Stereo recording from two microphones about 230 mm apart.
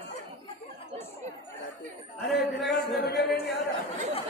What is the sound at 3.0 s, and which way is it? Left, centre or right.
Music, left.